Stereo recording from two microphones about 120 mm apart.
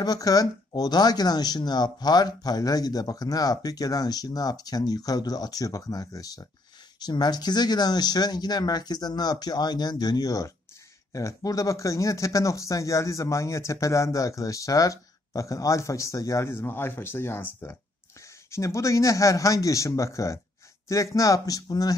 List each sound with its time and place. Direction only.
0.0 s speech: 30° left (ahead or behind)